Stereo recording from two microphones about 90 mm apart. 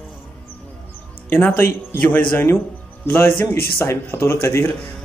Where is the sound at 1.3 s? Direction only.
25° left (ahead or behind).